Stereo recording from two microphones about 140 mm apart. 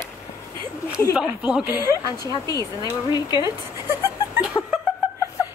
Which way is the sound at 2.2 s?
30° left (ahead or behind).